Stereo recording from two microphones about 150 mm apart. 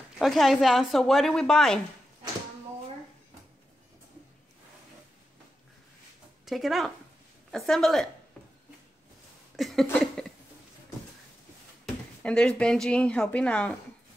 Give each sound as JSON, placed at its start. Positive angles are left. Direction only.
{"t": 0.2, "sound": "speech", "side_deg": 0}
{"t": 6.4, "sound": "speech", "side_deg": 0}
{"t": 9.6, "sound": "a sound", "side_deg": 0}
{"t": 12.2, "sound": "a woman's voice", "side_deg": 5}